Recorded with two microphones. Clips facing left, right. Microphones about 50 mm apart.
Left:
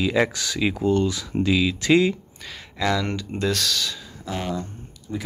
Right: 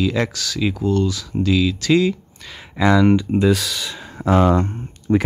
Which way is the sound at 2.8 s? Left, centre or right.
Centre.